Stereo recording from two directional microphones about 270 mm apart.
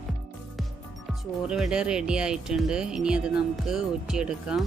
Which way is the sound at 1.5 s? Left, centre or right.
Centre.